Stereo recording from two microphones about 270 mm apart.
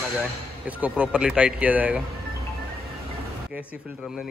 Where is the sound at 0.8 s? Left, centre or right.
Centre.